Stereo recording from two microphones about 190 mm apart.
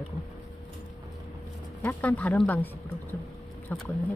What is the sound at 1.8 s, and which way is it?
Speech, 10° left (ahead or behind).